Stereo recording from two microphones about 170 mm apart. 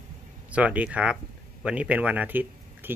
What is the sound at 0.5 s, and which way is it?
Speech, 10° right (ahead or behind).